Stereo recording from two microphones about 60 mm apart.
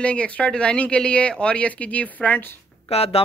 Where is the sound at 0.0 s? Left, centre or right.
Centre.